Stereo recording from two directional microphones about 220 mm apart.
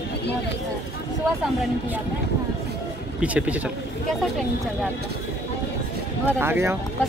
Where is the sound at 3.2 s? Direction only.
5° right (ahead or behind).